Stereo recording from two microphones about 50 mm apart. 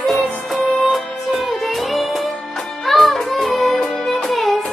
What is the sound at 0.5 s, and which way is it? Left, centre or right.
Music, centre.